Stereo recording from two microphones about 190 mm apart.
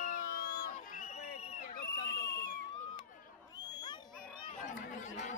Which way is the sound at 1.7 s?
55° left (ahead or behind).